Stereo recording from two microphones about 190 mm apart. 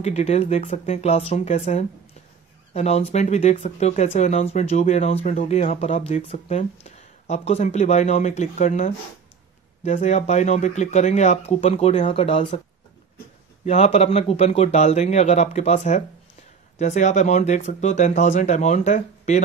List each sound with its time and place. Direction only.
0.0 s speech: 35° left (ahead or behind)
13.7 s speech: 35° left (ahead or behind)